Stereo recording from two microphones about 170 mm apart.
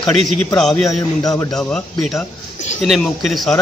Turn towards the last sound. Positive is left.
turn(degrees=0)  # may be behind; listen again after turning